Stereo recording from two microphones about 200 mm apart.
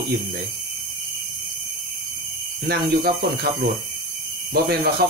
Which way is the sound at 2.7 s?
50° right (ahead or behind).